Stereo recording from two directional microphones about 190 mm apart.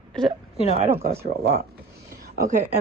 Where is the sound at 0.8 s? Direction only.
35° right (ahead or behind).